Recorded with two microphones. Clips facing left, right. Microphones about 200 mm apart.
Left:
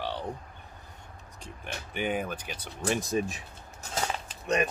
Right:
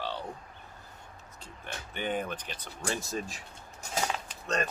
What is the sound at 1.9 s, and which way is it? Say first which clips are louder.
Speech: left 2 dB; 10° left (ahead or behind).